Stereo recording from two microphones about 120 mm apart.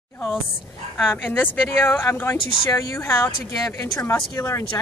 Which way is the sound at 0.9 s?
15° left (ahead or behind).